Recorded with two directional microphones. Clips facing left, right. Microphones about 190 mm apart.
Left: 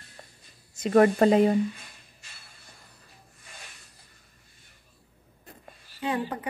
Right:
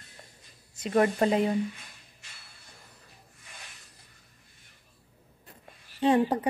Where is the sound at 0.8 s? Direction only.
55° left (ahead or behind).